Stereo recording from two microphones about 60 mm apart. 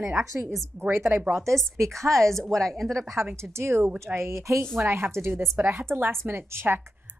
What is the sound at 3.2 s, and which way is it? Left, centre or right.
A woman's voice, right.